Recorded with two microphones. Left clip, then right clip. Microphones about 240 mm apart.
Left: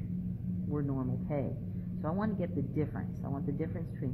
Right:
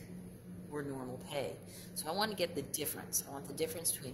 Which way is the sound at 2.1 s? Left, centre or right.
Right.